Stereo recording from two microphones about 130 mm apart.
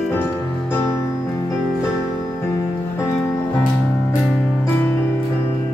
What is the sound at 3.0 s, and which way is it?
Music, 20° left (ahead or behind).